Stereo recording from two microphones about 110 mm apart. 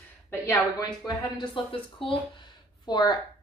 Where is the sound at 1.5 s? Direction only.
55° left (ahead or behind).